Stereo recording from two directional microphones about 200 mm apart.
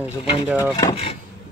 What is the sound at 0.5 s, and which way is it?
Speech, 15° left (ahead or behind).